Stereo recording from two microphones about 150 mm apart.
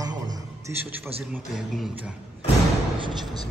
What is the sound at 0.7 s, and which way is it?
Speech, 15° right (ahead or behind).